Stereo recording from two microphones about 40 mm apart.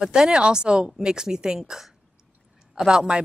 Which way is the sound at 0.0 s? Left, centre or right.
Centre.